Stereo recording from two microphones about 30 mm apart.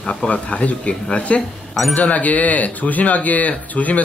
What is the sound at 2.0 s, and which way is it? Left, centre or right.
Speech, left.